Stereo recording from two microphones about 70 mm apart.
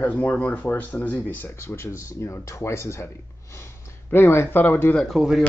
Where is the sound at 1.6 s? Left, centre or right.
Left.